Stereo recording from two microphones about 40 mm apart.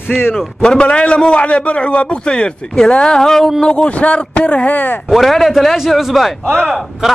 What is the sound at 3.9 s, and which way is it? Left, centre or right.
Speech, left.